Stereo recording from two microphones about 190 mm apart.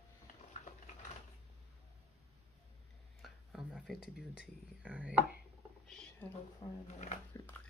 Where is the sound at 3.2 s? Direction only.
Centre (ahead or behind).